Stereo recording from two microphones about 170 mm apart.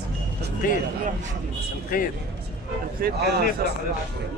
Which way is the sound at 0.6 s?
55° left (ahead or behind).